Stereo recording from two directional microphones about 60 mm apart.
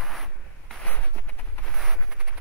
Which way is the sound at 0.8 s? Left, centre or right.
Left.